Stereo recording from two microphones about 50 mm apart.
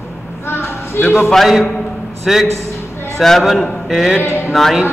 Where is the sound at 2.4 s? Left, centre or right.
Right.